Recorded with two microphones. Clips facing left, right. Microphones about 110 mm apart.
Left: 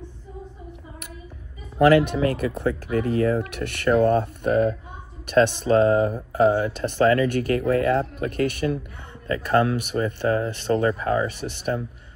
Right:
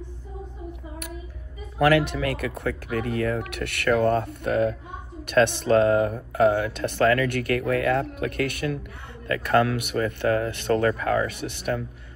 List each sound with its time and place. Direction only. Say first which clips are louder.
1.8 s speech: left 4 dB; 25° left (ahead or behind)
8.3 s speech: left 3 dB; 55° right (ahead or behind)
9.3 s speech: left 1 dB; 25° left (ahead or behind)